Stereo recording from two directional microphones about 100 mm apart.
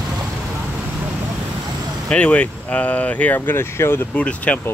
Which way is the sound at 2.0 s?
10° left (ahead or behind).